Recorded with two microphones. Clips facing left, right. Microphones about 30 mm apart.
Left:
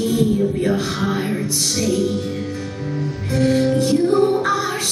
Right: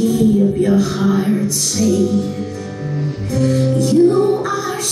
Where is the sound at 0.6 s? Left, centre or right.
Left.